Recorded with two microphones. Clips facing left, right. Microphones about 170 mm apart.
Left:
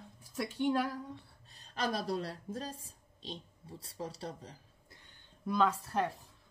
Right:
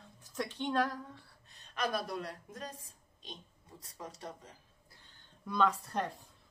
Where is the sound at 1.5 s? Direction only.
35° left (ahead or behind).